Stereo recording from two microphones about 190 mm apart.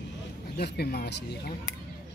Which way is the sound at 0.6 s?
60° left (ahead or behind).